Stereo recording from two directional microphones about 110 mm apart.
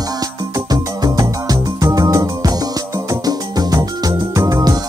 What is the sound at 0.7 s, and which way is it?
Music, 35° right (ahead or behind).